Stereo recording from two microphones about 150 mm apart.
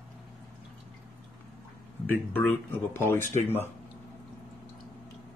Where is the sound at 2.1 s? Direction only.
10° left (ahead or behind).